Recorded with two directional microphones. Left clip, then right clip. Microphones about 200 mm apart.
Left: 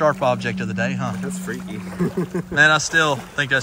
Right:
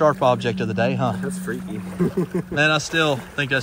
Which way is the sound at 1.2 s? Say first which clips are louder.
Right 1 dB; 30° right (ahead or behind).